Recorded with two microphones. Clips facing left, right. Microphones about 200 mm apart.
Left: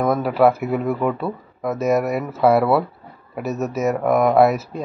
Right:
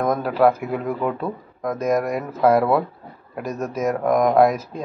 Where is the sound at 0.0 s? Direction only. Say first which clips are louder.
Left 2 dB; 5° left (ahead or behind).